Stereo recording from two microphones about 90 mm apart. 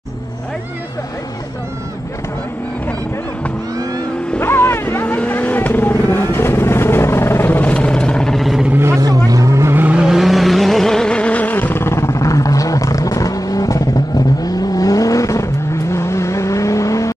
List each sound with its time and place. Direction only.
4.4 s vehicle: 25° left (ahead or behind); by 8.6 s centre (ahead or behind)
8.6 s vehicle: 25° right (ahead or behind)
9.0 s vehicle: 40° right (ahead or behind)
9.8 s vehicle: 10° right (ahead or behind); by 17.1 s 35° left (ahead or behind)